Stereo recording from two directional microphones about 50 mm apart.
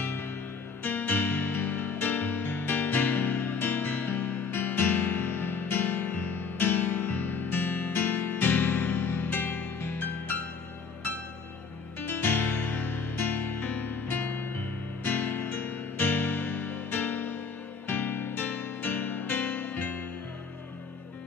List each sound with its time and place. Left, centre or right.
0.0 s music: left
12.1 s music: left